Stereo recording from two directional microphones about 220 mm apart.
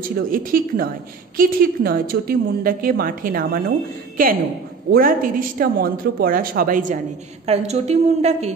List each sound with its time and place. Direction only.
0.0 s a woman's voice: 40° right (ahead or behind)
4.9 s a woman's voice: 40° right (ahead or behind)